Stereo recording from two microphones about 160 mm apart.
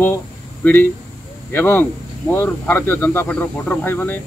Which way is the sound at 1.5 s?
15° left (ahead or behind).